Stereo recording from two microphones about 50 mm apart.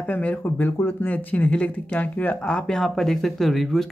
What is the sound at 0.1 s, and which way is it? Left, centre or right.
Speech, left.